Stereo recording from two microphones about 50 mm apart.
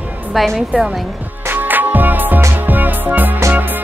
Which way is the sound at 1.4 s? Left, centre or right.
Right.